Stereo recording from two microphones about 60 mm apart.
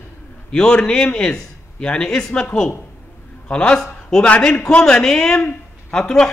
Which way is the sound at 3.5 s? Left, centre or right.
Centre.